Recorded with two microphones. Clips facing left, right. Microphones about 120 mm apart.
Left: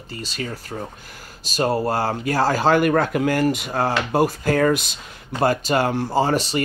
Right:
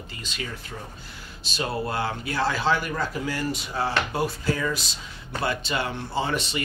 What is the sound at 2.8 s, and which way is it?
Speech, 65° left (ahead or behind).